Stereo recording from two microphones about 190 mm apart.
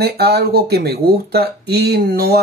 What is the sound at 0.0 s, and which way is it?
Speech, 55° right (ahead or behind).